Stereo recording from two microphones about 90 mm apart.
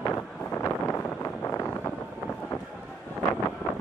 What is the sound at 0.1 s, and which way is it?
Vehicle, 30° left (ahead or behind).